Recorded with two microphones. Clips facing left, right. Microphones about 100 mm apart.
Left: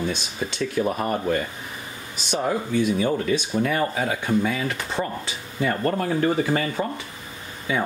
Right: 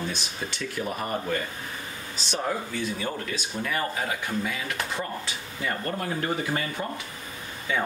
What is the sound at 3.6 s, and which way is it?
Speech, 30° left (ahead or behind).